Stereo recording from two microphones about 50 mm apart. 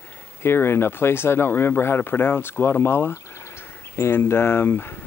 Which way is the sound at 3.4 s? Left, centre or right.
Left.